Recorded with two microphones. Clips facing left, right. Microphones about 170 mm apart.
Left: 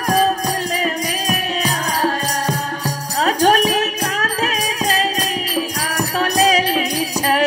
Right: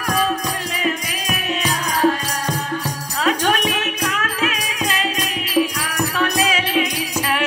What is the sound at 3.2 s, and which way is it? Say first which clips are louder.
Music: left 4 dB; 40° left (ahead or behind).